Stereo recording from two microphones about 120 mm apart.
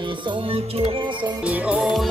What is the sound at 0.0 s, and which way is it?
Music, 45° right (ahead or behind).